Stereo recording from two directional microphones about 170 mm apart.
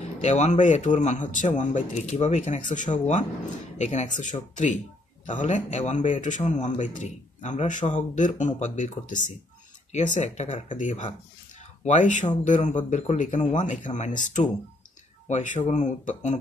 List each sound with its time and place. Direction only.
0.2 s a man's voice: 45° left (ahead or behind)